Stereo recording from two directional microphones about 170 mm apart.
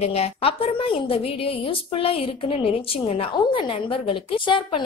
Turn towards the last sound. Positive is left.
turn(degrees=30)  # may be behind; listen again after turning